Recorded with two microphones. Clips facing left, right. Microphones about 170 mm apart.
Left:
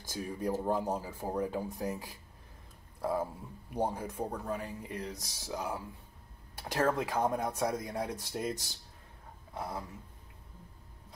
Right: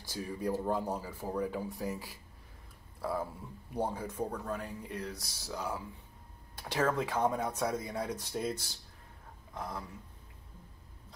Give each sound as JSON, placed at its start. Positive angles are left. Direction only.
{"t": 0.1, "sound": "speech", "side_deg": 15}